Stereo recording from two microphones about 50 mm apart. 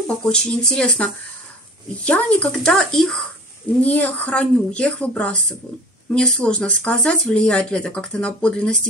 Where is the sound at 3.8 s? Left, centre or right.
Left.